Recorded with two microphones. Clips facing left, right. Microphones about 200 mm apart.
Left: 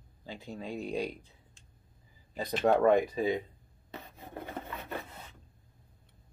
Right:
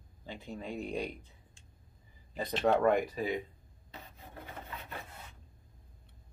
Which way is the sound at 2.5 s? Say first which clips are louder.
Left 3 dB; 15° left (ahead or behind).